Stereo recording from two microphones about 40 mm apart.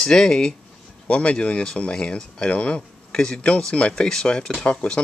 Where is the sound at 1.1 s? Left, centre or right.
Left.